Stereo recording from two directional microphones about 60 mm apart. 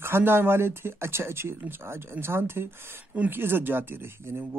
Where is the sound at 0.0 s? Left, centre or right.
Right.